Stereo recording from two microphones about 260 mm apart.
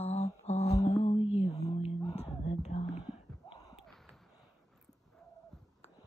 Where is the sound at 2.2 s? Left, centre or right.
Left.